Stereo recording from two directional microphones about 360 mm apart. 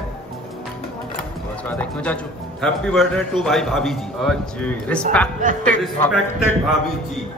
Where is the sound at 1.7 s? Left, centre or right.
Centre.